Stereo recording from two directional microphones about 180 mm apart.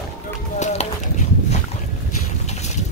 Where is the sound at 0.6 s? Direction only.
40° left (ahead or behind).